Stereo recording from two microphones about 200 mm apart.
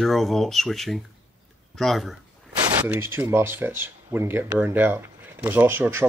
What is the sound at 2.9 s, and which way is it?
Speech, 10° right (ahead or behind).